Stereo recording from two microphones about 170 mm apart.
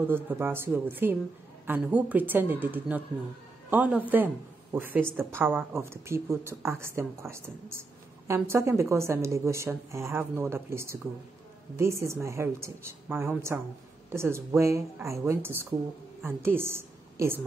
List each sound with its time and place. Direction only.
0.0 s a woman's voice: 15° right (ahead or behind)